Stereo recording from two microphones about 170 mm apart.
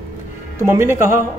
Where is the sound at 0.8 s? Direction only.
15° right (ahead or behind).